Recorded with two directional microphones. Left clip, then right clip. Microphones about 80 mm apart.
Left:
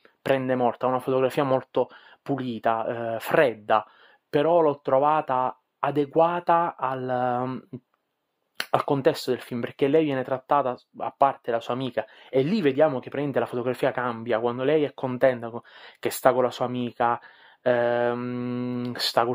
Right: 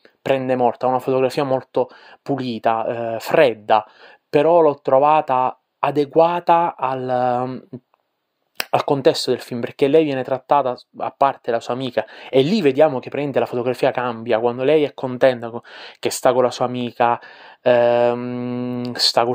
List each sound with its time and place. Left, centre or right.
0.5 s speech: centre
0.9 s speech: right
1.2 s speech: centre
2.3 s speech: right
2.6 s speech: centre
4.3 s speech: right
8.7 s speech: right; by 10.8 s centre
11.0 s speech: right
11.4 s speech: centre
16.3 s speech: right
18.1 s mantra: centre
18.9 s speech: centre